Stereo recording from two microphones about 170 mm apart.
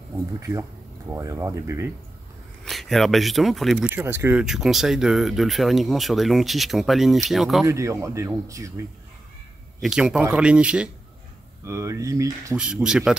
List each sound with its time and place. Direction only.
0.5 s speech: 15° right (ahead or behind)
2.6 s speech: centre (ahead or behind)
3.9 s speech: 15° right (ahead or behind)
7.6 s speech: 20° right (ahead or behind)
9.8 s speech: 5° right (ahead or behind)
11.6 s speech: 15° right (ahead or behind)
12.5 s speech: 5° right (ahead or behind)